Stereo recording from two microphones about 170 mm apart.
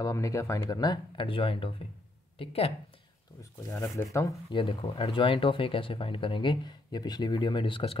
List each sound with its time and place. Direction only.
0.0 s speech: 20° left (ahead or behind); by 2.7 s 35° left (ahead or behind)
3.7 s speech: 15° left (ahead or behind)
4.5 s speech: 30° left (ahead or behind)